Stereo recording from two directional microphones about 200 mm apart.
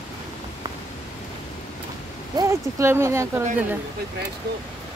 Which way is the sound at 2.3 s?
15° right (ahead or behind).